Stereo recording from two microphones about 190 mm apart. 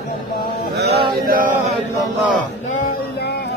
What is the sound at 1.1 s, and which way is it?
Chant, 50° right (ahead or behind).